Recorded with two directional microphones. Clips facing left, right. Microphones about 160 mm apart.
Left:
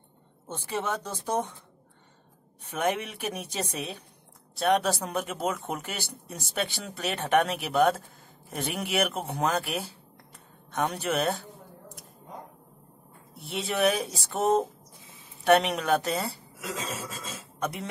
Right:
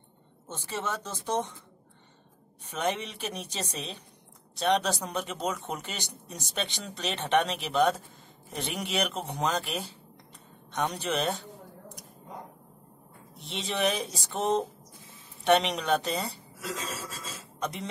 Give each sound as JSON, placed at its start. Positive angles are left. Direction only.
{"t": 0.5, "sound": "speech", "side_deg": 10}
{"t": 2.7, "sound": "speech", "side_deg": 10}
{"t": 13.4, "sound": "speech", "side_deg": 5}
{"t": 16.6, "sound": "filing", "side_deg": 20}
{"t": 17.6, "sound": "speech", "side_deg": 10}